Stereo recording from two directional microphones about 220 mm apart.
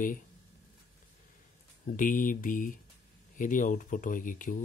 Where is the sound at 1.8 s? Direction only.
35° left (ahead or behind).